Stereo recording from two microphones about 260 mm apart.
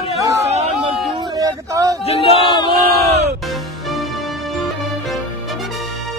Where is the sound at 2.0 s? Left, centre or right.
Left.